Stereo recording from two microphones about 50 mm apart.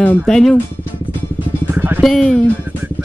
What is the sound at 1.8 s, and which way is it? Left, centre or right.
Music, right.